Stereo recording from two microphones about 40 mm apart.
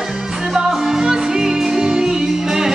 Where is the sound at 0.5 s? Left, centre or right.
Centre.